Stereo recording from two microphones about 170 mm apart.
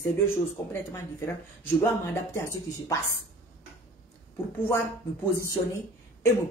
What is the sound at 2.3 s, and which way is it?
Speech, 15° left (ahead or behind).